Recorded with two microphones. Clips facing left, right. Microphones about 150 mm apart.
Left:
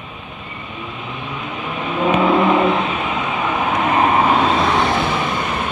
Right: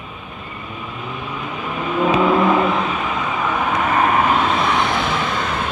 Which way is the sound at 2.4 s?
20° left (ahead or behind).